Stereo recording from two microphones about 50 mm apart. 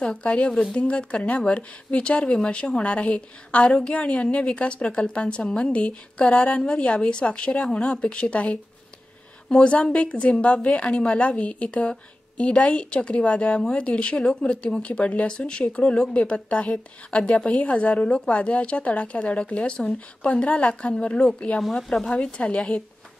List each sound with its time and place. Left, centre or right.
0.1 s speech: left
21.7 s speech: centre